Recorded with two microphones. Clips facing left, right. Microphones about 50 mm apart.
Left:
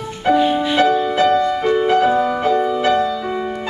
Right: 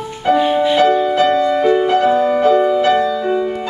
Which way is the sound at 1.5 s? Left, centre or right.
Centre.